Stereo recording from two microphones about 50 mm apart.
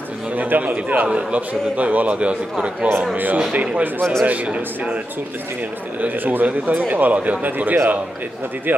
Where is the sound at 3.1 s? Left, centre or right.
Right.